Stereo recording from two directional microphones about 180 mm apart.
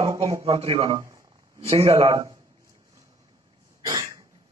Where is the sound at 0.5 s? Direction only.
30° right (ahead or behind).